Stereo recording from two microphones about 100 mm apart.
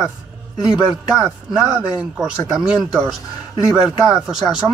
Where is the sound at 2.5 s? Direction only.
5° right (ahead or behind).